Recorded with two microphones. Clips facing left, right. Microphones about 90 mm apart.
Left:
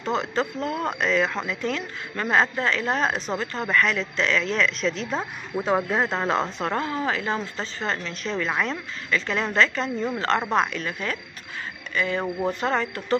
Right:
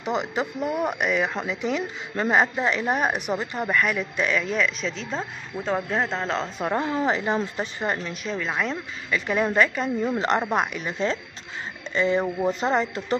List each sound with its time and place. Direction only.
0.0 s speech: 15° right (ahead or behind); by 6.5 s 5° left (ahead or behind)
6.6 s speech: 10° right (ahead or behind)
9.1 s speech: 10° right (ahead or behind)